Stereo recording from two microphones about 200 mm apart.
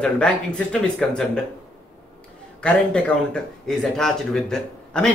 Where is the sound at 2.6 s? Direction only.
5° left (ahead or behind).